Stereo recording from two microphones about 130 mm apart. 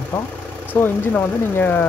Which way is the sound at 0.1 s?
15° left (ahead or behind).